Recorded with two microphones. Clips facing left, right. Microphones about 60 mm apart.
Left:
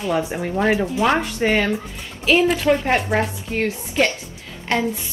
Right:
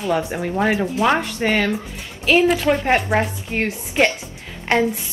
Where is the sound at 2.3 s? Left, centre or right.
Centre.